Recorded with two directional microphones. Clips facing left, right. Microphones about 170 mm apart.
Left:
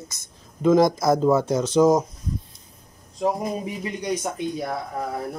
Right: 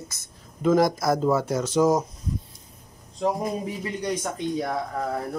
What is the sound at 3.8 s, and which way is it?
Speech, 15° left (ahead or behind).